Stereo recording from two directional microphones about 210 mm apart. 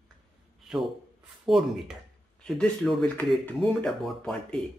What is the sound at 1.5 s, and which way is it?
Speech, centre (ahead or behind).